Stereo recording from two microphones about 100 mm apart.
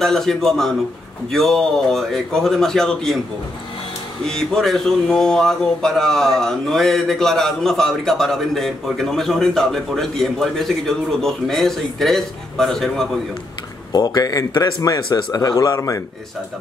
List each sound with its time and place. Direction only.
0.0 s speech: 5° left (ahead or behind)
4.3 s speech: 5° left (ahead or behind)
13.9 s speech: 40° left (ahead or behind)